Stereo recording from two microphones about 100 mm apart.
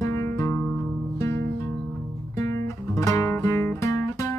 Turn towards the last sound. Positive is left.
turn(degrees=30)  # may be behind; listen again after turning